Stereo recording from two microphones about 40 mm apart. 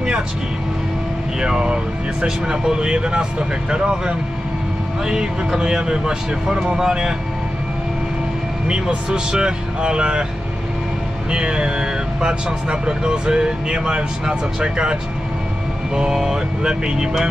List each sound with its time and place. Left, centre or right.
1.4 s speech: centre
8.6 s speech: right
11.2 s speech: right